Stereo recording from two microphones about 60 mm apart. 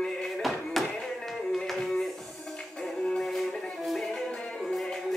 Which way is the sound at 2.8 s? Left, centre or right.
Centre.